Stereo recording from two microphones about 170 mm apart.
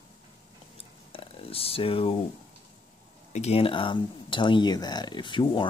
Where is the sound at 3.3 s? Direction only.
40° left (ahead or behind).